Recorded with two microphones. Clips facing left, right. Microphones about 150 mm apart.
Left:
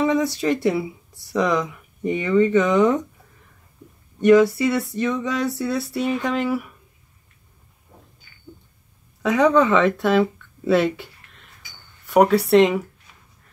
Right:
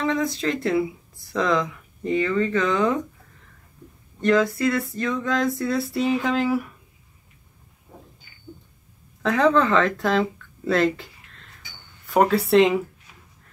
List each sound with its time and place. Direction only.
0.0 s speech: 10° left (ahead or behind)
4.2 s speech: 5° left (ahead or behind)
9.2 s speech: centre (ahead or behind)
10.7 s a sound: 5° left (ahead or behind)
12.1 s speech: centre (ahead or behind)